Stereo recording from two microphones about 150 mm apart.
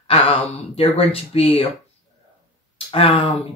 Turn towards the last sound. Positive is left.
turn(degrees=35)  # may be behind; listen again after turning